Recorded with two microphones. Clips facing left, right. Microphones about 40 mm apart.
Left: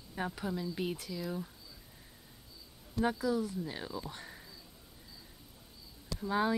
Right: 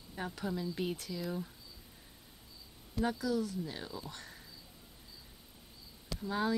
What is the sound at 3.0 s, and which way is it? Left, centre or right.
Speech, centre.